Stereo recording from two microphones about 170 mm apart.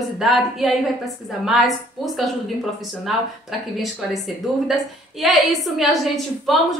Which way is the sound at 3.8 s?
Centre (ahead or behind).